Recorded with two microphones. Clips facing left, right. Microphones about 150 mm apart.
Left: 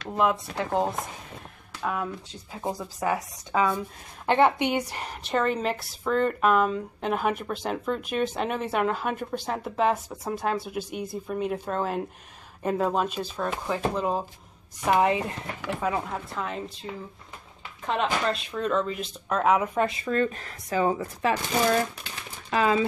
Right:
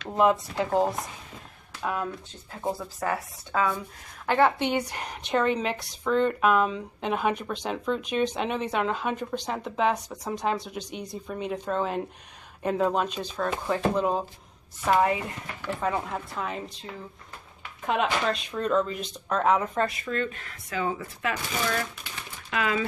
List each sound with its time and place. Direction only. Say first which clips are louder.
0.1 s a woman's voice: right 2 dB; centre (ahead or behind)
1.8 s speech: even; centre (ahead or behind)
2.5 s a woman's voice: right 1 dB; 10° left (ahead or behind)
14.9 s speech: left 1 dB; 20° left (ahead or behind)
15.6 s a woman's voice: even; 5° left (ahead or behind)
18.2 s a woman's voice: even; centre (ahead or behind)
20.1 s speech: left 4 dB; 40° left (ahead or behind)